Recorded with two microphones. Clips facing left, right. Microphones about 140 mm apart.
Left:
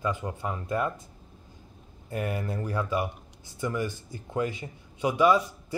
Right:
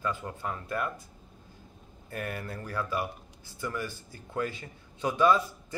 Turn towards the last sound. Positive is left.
turn(degrees=15)  # may be behind; listen again after turning